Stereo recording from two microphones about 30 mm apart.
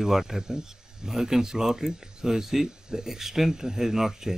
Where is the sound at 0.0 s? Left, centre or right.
Centre.